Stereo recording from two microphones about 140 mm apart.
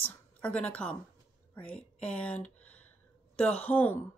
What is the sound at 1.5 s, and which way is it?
Speech, 10° left (ahead or behind).